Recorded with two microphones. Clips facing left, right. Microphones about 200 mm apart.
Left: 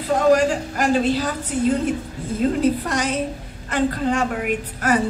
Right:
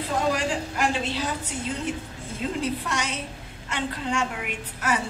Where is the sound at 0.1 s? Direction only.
45° left (ahead or behind).